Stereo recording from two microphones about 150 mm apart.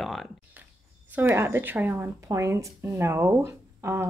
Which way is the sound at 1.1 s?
15° right (ahead or behind).